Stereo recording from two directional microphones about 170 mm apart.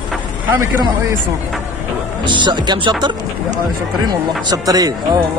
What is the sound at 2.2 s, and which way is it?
Speech, 25° right (ahead or behind).